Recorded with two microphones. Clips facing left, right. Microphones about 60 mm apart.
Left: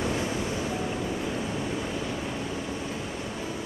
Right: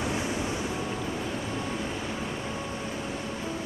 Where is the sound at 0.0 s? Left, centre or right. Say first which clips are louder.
Left 1 dB; centre.